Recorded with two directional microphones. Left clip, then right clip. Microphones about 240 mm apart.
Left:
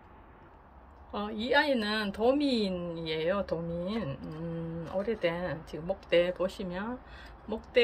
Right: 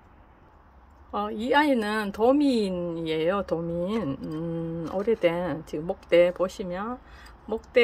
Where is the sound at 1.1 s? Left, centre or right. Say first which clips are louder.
Right 4 dB; centre.